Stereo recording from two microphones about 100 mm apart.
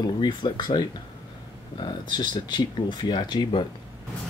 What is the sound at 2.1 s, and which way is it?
Speech, 50° left (ahead or behind).